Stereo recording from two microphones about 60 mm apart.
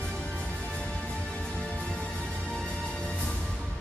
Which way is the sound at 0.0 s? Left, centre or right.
Centre.